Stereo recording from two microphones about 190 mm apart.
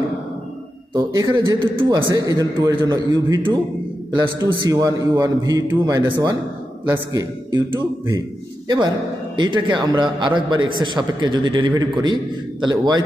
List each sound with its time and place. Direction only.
0.9 s a man's voice: 15° right (ahead or behind)
6.0 s a man's voice: 25° right (ahead or behind)